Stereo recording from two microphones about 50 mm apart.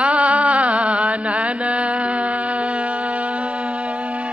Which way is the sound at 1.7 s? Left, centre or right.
Centre.